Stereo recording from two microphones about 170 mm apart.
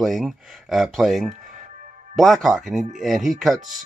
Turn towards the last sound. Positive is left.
turn(degrees=0)  # may be behind; listen again after turning